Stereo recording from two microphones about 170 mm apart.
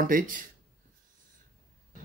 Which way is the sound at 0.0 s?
50° right (ahead or behind).